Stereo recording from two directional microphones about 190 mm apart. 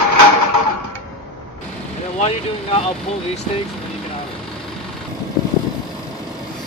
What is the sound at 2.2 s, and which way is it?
Speech, 30° left (ahead or behind).